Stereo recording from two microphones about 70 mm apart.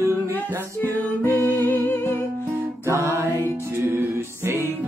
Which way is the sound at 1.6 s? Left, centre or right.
Left.